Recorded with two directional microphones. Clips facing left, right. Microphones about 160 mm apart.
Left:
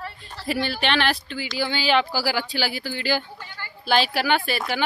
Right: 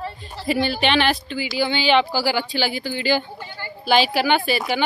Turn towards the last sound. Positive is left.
turn(degrees=0)  # may be behind; listen again after turning